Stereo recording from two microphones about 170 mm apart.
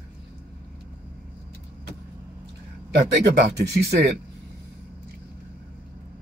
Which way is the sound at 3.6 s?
75° right (ahead or behind).